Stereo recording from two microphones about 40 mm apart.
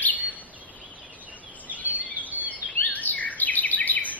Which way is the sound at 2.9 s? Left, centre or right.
Left.